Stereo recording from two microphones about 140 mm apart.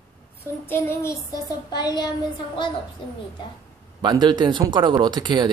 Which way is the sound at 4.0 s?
30° right (ahead or behind).